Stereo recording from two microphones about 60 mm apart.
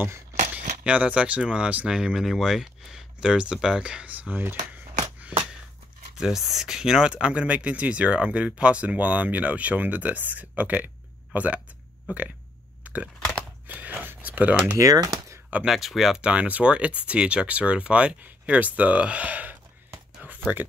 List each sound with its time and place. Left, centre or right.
0.8 s speech: right
1.9 s speech: centre; by 4.6 s right
5.3 s a sound: centre
6.1 s speech: centre
12.8 s a sound: right
14.8 s speech: right
15.6 s speech: centre
16.2 s speech: right
20.2 s a sound: right